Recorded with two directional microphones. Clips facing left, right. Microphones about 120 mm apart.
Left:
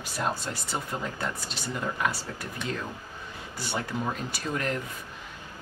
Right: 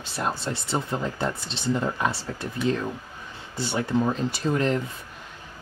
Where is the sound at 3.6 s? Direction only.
25° right (ahead or behind).